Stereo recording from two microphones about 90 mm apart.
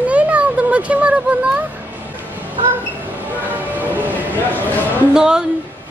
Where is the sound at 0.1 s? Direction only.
15° right (ahead or behind).